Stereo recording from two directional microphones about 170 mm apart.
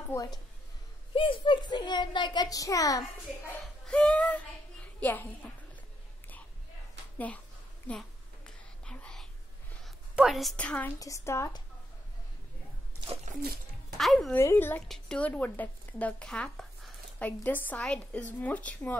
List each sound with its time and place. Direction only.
0.1 s a child's voice: 20° left (ahead or behind)
3.8 s child singing: 5° left (ahead or behind)
7.9 s speech: 5° left (ahead or behind)
8.5 s whispering: 5° left (ahead or behind)
9.8 s a woman's voice: centre (ahead or behind)
11.0 s a child's voice: 20° left (ahead or behind)
13.0 s splash: 35° right (ahead or behind)
13.9 s speech: centre (ahead or behind)
14.3 s speech: 15° left (ahead or behind)